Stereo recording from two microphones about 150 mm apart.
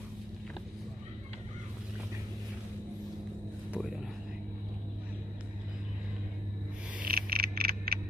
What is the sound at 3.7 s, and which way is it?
Vehicle, 5° right (ahead or behind).